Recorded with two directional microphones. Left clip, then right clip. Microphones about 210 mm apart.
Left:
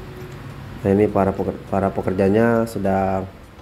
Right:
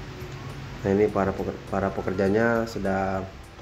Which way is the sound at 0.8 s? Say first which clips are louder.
Left 5 dB; 15° left (ahead or behind).